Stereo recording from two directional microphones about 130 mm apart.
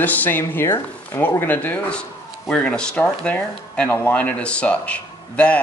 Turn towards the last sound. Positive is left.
turn(degrees=10)  # may be behind; listen again after turning